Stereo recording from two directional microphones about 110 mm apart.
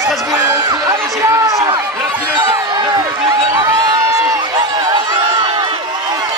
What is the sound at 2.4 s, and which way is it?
Speech, 40° right (ahead or behind).